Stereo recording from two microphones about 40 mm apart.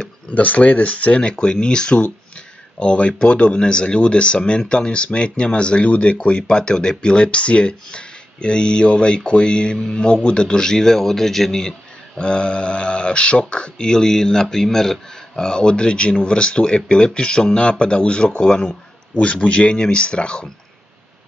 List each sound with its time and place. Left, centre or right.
0.3 s a man's voice: left; by 11.7 s centre
12.2 s speech: left
18.7 s a sound: left
19.4 s speech: left